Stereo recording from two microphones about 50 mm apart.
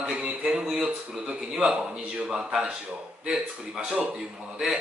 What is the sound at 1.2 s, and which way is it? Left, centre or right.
Speech, centre.